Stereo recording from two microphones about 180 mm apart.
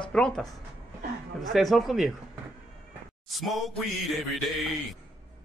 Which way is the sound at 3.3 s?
Centre (ahead or behind).